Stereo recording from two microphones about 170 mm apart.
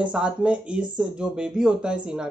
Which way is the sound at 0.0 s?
5° right (ahead or behind).